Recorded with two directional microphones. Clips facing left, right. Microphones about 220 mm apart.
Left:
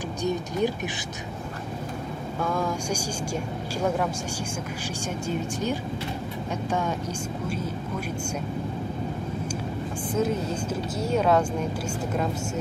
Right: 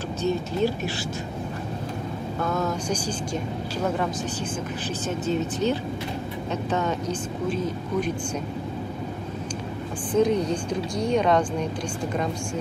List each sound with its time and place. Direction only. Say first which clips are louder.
0.2 s speech: right 2 dB; 15° left (ahead or behind)
2.5 s speech: right 1 dB; 10° left (ahead or behind)
5.3 s speech: right 4 dB; 10° left (ahead or behind)
10.1 s speech: right 5 dB; 5° left (ahead or behind)